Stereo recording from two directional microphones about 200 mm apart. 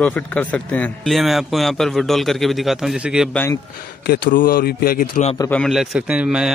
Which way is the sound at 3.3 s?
10° left (ahead or behind).